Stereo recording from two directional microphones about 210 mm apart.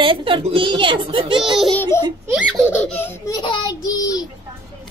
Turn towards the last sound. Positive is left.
turn(degrees=15)  # may be behind; listen again after turning